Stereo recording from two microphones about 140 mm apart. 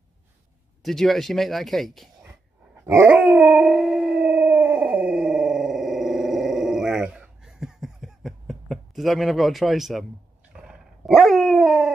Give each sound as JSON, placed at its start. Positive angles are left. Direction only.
{"t": 0.8, "sound": "speech", "side_deg": 0}
{"t": 2.2, "sound": "dog", "side_deg": -20}
{"t": 3.1, "sound": "howl", "side_deg": -5}
{"t": 10.5, "sound": "dog", "side_deg": -5}